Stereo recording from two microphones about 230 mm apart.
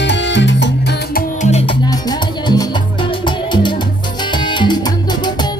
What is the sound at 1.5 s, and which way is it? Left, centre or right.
Music, centre.